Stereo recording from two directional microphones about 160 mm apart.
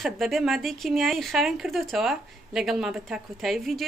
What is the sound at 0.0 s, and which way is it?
Speech, centre (ahead or behind).